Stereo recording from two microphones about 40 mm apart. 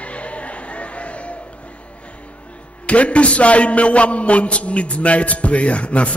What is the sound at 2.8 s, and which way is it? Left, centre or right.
A man's voice, left.